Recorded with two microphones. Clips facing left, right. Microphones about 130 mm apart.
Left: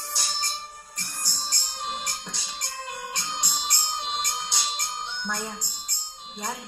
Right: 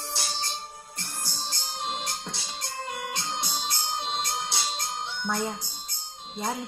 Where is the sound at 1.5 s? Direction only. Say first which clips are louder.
Right 1 dB; 25° right (ahead or behind).